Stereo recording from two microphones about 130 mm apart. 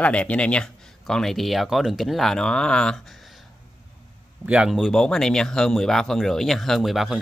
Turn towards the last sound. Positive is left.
turn(degrees=0)  # may be behind; listen again after turning